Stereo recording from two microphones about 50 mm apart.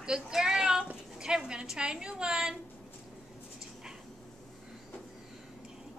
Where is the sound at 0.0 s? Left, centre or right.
Centre.